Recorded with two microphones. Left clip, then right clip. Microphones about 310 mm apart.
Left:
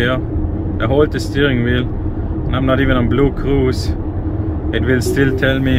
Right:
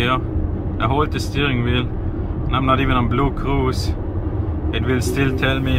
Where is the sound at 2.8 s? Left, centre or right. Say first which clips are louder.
Left 3 dB; left.